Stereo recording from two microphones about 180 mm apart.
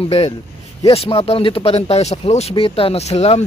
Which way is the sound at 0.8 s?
35° left (ahead or behind).